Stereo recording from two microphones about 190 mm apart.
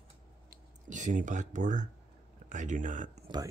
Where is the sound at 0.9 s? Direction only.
40° right (ahead or behind).